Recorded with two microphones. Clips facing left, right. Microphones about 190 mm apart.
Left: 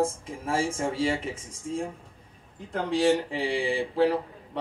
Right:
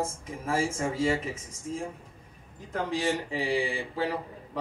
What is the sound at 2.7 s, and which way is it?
A man's voice, 30° left (ahead or behind).